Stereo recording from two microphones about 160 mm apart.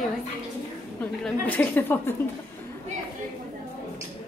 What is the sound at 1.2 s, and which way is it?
Speech, 10° left (ahead or behind).